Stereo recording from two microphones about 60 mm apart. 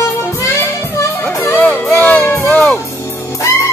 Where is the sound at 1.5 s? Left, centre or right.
Left.